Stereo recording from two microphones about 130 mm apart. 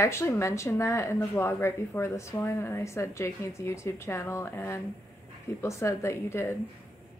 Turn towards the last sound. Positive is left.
turn(degrees=20)  # may be behind; listen again after turning